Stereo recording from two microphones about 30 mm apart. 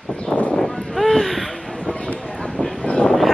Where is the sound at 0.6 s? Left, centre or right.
Centre.